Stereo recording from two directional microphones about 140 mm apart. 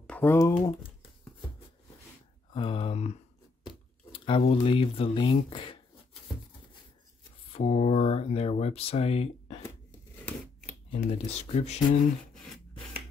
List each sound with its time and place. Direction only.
0.0 s speech: 10° left (ahead or behind)
2.5 s speech: 40° left (ahead or behind)
3.6 s a sound: 40° left (ahead or behind)
4.4 s speech: 45° left (ahead or behind)
7.5 s speech: 50° left (ahead or behind)
11.1 s speech: 50° left (ahead or behind)